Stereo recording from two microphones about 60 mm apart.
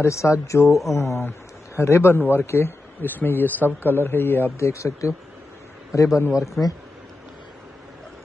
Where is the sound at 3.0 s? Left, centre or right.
Left.